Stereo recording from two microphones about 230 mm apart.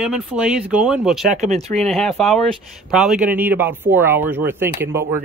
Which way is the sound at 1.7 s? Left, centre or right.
Centre.